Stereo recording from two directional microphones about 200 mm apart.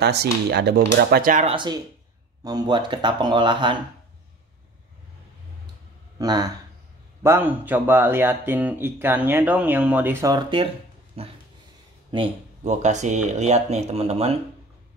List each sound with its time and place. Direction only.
0.0 s speech: 55° right (ahead or behind)
1.5 s speech: 25° right (ahead or behind)
6.1 s speech: 20° right (ahead or behind)
12.6 s speech: 35° right (ahead or behind)